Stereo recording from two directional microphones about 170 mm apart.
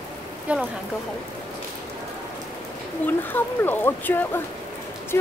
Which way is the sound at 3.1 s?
10° left (ahead or behind).